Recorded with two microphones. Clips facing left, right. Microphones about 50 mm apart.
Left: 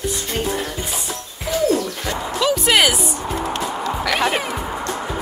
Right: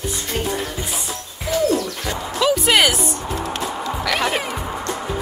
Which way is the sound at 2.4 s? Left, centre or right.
Centre.